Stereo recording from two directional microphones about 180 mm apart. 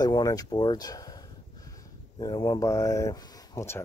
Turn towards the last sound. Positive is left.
turn(degrees=15)  # may be behind; listen again after turning